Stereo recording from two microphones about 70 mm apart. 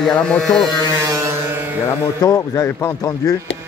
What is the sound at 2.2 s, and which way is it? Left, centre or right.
Speech, left.